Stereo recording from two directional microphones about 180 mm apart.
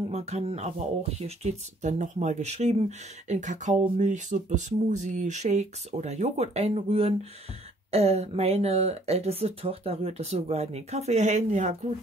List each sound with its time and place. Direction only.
0.1 s speech: 40° right (ahead or behind)